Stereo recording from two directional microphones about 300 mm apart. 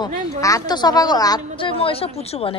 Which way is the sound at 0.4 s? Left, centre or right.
Centre.